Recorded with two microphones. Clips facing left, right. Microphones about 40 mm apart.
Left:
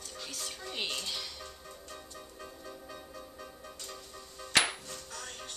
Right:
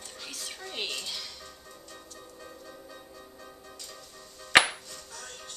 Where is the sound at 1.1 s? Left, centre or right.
Centre.